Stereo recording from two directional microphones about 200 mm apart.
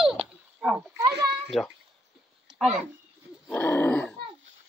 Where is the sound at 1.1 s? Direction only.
55° right (ahead or behind).